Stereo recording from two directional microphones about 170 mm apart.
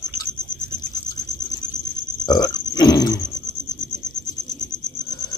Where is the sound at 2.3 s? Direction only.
25° left (ahead or behind).